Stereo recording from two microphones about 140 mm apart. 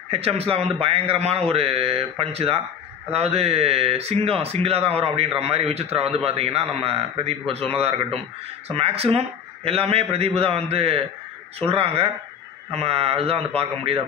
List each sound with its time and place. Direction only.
0.1 s speech: 45° right (ahead or behind)